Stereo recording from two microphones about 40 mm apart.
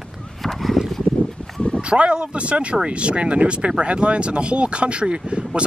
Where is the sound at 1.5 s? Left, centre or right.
Centre.